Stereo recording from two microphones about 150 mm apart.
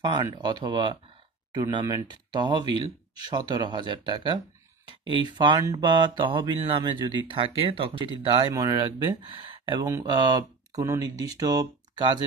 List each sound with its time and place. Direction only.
0.0 s speech: 30° right (ahead or behind)